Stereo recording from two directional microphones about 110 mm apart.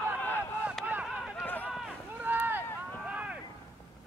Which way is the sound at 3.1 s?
10° right (ahead or behind).